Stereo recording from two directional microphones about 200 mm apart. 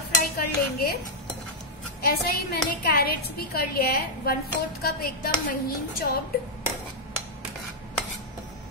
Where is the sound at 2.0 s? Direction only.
50° left (ahead or behind).